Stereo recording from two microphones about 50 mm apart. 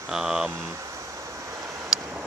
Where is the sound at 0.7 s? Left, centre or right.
Right.